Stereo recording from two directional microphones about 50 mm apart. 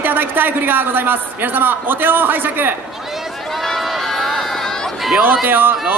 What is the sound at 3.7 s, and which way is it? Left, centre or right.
Run, centre.